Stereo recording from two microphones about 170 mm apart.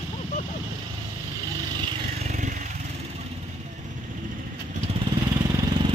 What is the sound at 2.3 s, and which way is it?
Vehicle, 50° right (ahead or behind).